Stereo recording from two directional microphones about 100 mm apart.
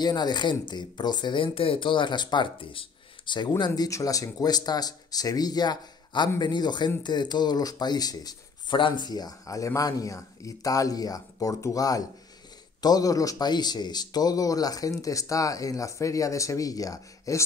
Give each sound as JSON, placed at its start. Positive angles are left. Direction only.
{"t": 0.0, "sound": "speech", "side_deg": 45}
{"t": 8.7, "sound": "a man's voice", "side_deg": 50}